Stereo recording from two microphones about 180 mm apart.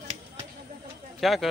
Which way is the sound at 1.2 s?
Centre (ahead or behind).